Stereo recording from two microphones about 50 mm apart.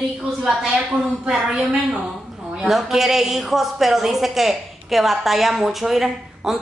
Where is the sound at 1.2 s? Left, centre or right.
Centre.